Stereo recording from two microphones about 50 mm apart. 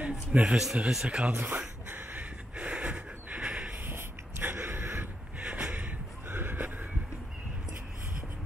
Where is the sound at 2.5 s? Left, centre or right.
Right.